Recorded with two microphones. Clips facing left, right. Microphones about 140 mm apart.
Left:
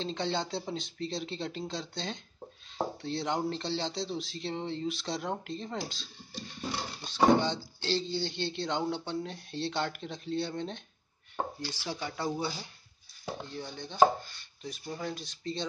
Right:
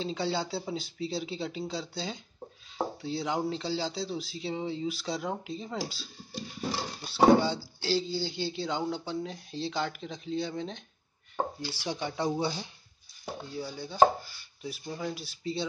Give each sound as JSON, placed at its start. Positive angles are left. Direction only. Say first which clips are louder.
{"t": 0.0, "sound": "speech", "louder": "right 1 dB", "side_deg": -5}
{"t": 11.6, "sound": "speech", "louder": "right 3 dB", "side_deg": -15}
{"t": 13.5, "sound": "speech", "louder": "right 3 dB", "side_deg": -5}